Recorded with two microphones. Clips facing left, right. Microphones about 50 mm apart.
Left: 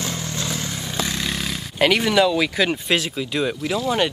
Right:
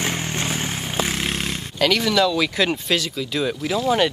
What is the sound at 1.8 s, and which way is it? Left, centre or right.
Speech, left.